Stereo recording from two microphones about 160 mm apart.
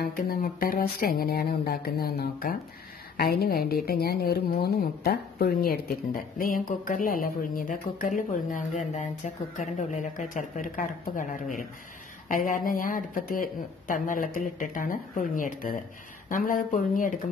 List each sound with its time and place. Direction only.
0.0 s a woman's voice: 70° left (ahead or behind); by 17.2 s 55° left (ahead or behind)